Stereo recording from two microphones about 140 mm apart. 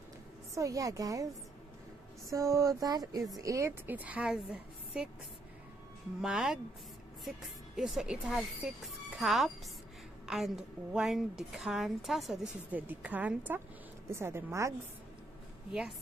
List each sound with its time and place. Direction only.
0.6 s a sound: 25° right (ahead or behind)
3.3 s a woman's voice: 25° right (ahead or behind); by 5.1 s 5° right (ahead or behind)
6.2 s a woman's voice: 5° right (ahead or behind)
7.7 s a woman's voice: 5° right (ahead or behind)
12.7 s a woman's voice: 10° right (ahead or behind)
14.0 s a sound: 20° right (ahead or behind)